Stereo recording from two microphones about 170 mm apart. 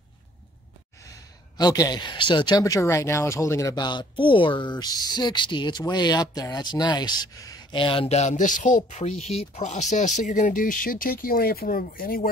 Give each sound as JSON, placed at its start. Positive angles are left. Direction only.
{"t": 1.6, "sound": "speech", "side_deg": 20}